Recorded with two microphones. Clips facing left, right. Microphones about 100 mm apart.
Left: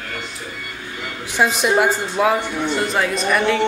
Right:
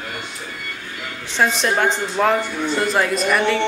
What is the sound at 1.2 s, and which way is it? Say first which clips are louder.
A woman's voice: left 1 dB; 10° left (ahead or behind).